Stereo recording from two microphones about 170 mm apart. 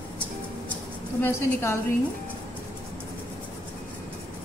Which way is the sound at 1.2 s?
10° left (ahead or behind).